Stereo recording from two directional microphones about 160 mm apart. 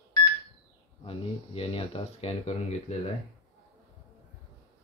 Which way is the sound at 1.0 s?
35° left (ahead or behind).